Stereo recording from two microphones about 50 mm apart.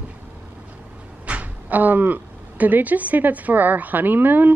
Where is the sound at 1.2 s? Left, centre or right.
Right.